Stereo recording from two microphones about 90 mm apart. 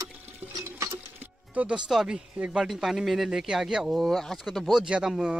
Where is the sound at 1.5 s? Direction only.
15° right (ahead or behind).